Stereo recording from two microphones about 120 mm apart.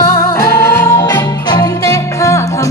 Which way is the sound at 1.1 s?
35° left (ahead or behind).